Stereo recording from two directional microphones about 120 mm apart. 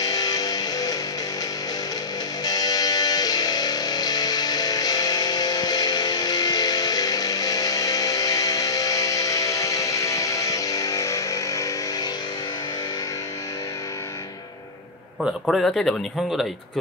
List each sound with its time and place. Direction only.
0.0 s music: 35° left (ahead or behind)
2.4 s music: 30° left (ahead or behind)
15.2 s speech: centre (ahead or behind)